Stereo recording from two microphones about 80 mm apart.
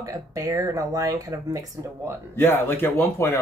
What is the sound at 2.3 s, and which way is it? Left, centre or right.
Speech, left.